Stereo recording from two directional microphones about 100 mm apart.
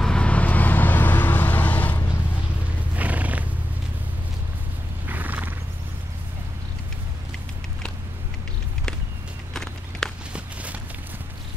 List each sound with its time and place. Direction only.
0.0 s vehicle: 10° left (ahead or behind)
3.0 s horse: 15° right (ahead or behind)
5.0 s a sound: 15° right (ahead or behind)
9.5 s walk: 5° left (ahead or behind)
10.3 s walk: 15° right (ahead or behind)